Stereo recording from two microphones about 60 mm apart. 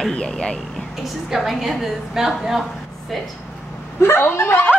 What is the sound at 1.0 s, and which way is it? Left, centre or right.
A woman's voice, centre.